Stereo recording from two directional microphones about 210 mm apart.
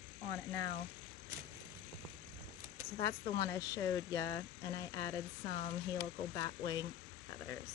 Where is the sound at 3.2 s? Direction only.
25° left (ahead or behind).